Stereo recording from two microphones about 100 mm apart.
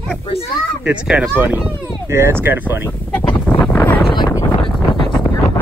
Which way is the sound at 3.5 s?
15° left (ahead or behind).